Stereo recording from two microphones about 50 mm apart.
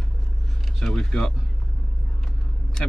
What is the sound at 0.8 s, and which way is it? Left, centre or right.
Speech, centre.